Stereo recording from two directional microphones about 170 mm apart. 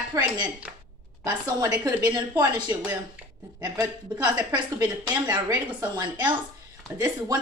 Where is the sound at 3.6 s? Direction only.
20° right (ahead or behind).